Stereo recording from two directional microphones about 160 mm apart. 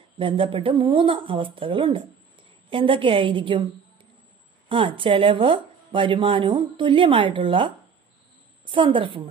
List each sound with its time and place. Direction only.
0.2 s speech: 35° right (ahead or behind)
4.6 s speech: 35° right (ahead or behind)